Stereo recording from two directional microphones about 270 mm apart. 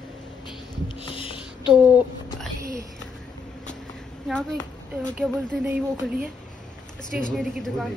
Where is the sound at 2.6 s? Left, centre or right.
Centre.